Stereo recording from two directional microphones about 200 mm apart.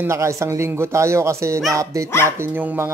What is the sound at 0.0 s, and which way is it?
Speech, 15° right (ahead or behind).